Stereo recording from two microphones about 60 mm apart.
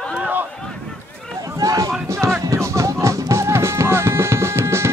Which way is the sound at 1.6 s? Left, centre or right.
Right.